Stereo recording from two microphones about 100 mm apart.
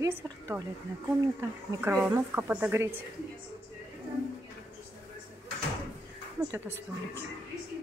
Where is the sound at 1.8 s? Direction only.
20° right (ahead or behind).